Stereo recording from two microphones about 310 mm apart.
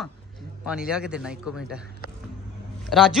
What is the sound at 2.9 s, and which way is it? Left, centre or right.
Speech, centre.